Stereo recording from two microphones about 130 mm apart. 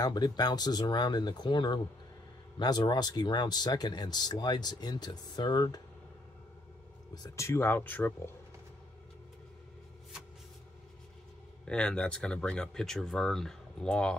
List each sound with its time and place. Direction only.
0.0 s speech: 30° left (ahead or behind)
7.2 s speech: 20° left (ahead or behind)
11.6 s speech: 10° left (ahead or behind)